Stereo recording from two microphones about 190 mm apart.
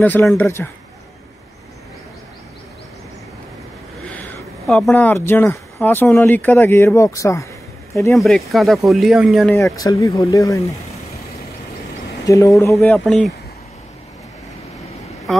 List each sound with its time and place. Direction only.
0.0 s speech: 10° left (ahead or behind)
4.1 s speech: 5° left (ahead or behind)
8.2 s speech: centre (ahead or behind)
9.6 s speech: 15° left (ahead or behind)
12.3 s speech: 15° left (ahead or behind)
12.8 s speech: 5° left (ahead or behind)